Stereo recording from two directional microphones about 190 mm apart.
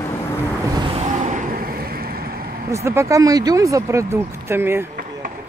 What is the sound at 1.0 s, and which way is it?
Vehicle, 40° right (ahead or behind).